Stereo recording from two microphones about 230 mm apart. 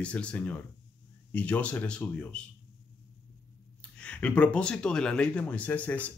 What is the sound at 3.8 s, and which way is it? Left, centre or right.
Speech, centre.